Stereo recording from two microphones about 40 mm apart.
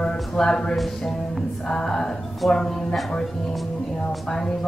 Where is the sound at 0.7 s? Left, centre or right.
Centre.